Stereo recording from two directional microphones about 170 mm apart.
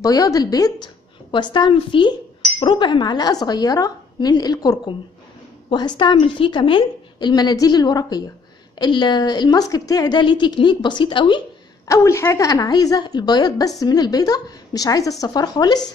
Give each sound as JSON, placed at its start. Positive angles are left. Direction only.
{"t": 0.0, "sound": "a woman's voice", "side_deg": 20}
{"t": 11.9, "sound": "a woman's voice", "side_deg": 15}